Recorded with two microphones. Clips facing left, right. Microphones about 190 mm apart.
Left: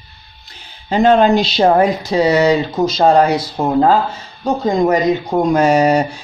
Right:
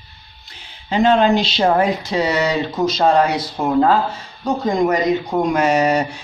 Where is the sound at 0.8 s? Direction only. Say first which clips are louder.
Left 3 dB; 45° left (ahead or behind).